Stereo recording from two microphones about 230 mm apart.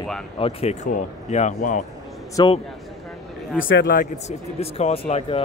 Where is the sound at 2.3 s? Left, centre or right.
Left.